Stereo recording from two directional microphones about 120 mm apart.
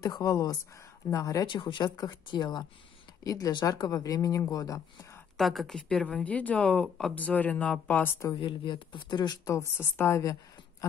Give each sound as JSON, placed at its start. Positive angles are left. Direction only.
{"t": 0.0, "sound": "speech", "side_deg": 30}
{"t": 1.5, "sound": "speech", "side_deg": 40}
{"t": 5.4, "sound": "speech", "side_deg": 0}
{"t": 8.3, "sound": "speech", "side_deg": 40}